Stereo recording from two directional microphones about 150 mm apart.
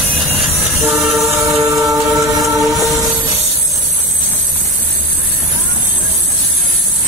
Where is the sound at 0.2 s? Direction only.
Centre (ahead or behind).